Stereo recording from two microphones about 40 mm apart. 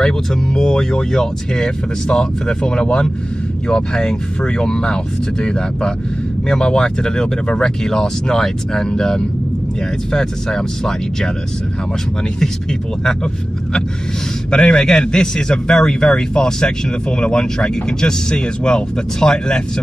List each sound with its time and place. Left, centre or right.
0.0 s speech: centre
14.5 s speech: left